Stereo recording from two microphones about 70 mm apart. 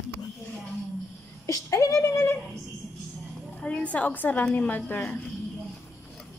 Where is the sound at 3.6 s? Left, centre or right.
Centre.